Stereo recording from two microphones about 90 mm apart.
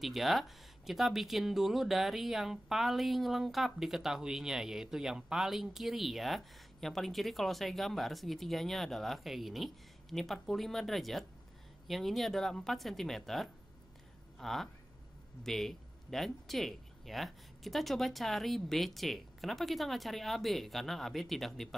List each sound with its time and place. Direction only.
0.0 s speech: centre (ahead or behind)